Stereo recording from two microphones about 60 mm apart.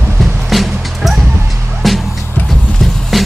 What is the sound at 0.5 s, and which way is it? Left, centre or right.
Music, centre.